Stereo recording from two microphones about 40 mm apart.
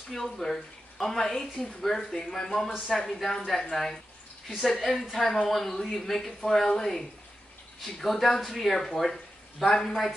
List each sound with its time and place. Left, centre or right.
0.1 s speech: centre